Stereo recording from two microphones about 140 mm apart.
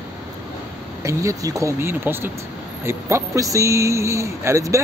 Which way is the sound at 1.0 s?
25° right (ahead or behind).